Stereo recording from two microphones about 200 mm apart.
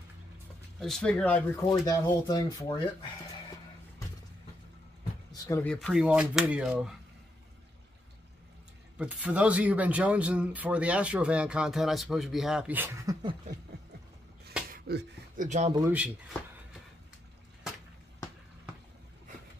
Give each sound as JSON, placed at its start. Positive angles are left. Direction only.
{"t": 0.7, "sound": "speech", "side_deg": 0}
{"t": 1.7, "sound": "speech", "side_deg": 20}
{"t": 5.3, "sound": "speech", "side_deg": 10}
{"t": 8.9, "sound": "speech", "side_deg": -5}
{"t": 14.7, "sound": "a sound", "side_deg": -50}
{"t": 15.4, "sound": "speech", "side_deg": -35}
{"t": 15.7, "sound": "speech", "side_deg": -10}